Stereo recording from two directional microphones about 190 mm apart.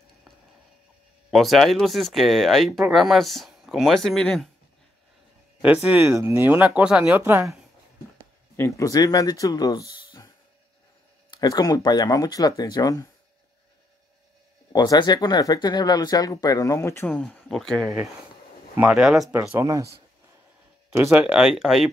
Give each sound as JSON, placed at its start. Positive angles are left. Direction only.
{"t": 1.3, "sound": "speech", "side_deg": 0}
{"t": 5.9, "sound": "speech", "side_deg": -10}
{"t": 8.5, "sound": "speech", "side_deg": 15}
{"t": 14.7, "sound": "speech", "side_deg": 20}
{"t": 20.9, "sound": "speech", "side_deg": -15}
{"t": 21.2, "sound": "speech", "side_deg": -5}